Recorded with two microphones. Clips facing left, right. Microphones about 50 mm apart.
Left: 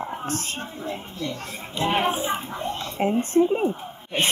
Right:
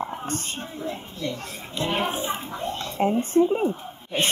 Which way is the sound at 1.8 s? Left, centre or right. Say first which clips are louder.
Left 3 dB; centre.